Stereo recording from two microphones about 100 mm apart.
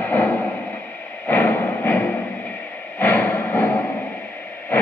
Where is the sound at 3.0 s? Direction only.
20° left (ahead or behind).